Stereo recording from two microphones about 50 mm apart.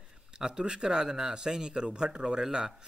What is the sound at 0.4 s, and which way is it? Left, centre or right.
Speech, centre.